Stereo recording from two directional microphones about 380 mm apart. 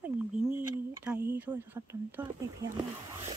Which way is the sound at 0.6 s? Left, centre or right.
Centre.